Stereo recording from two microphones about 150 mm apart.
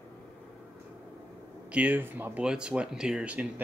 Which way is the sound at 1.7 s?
10° right (ahead or behind).